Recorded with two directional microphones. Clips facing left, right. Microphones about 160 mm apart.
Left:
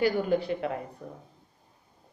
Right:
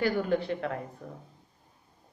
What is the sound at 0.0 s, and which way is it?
Speech, 15° left (ahead or behind).